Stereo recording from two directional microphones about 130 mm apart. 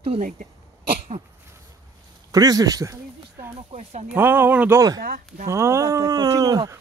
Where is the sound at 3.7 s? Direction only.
55° right (ahead or behind).